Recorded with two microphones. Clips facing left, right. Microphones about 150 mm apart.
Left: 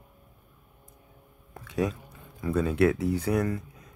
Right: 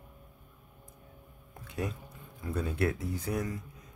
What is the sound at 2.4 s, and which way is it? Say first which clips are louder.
Speech: left 8 dB; 90° left.